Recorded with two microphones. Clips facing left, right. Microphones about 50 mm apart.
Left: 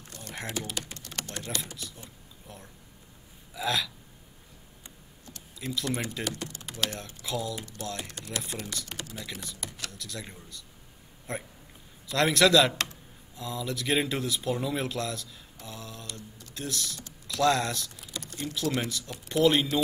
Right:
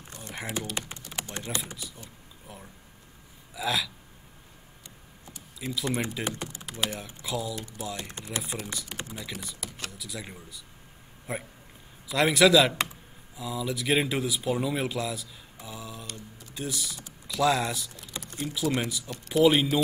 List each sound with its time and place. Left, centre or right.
0.3 s typing: centre
0.7 s typing: right
1.0 s typing: centre
1.3 s speech: right
1.8 s speech: centre
5.2 s a sound: centre
5.9 s speech: centre
6.7 s speech: centre
7.2 s speech: centre
8.1 s speech: right
8.4 s speech: centre
15.5 s mantra: centre
16.2 s speech: centre